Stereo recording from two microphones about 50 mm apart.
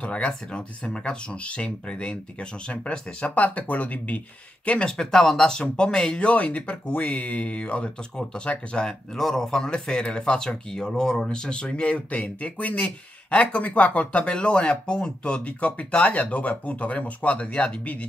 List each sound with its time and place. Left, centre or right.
0.0 s speech: left
4.6 s speech: left
4.9 s speech: centre; by 14.3 s left
14.3 s speech: centre